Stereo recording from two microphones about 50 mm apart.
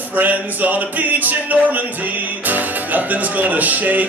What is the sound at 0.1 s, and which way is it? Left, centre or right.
Music, right.